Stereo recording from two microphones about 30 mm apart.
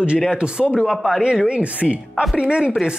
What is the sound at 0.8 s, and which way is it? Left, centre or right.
Speech, centre.